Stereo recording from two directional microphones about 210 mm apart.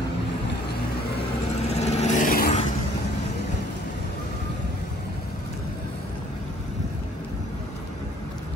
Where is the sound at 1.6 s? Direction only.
30° left (ahead or behind).